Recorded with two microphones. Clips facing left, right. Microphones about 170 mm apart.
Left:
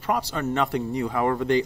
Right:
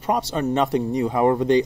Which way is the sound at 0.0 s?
20° right (ahead or behind).